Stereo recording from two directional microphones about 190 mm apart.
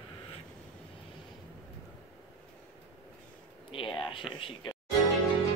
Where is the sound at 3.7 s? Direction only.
25° left (ahead or behind).